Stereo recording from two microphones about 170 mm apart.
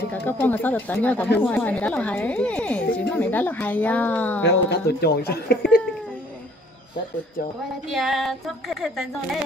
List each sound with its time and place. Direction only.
0.1 s speech: 10° left (ahead or behind)
4.5 s speech: 70° left (ahead or behind)
7.9 s speech: centre (ahead or behind)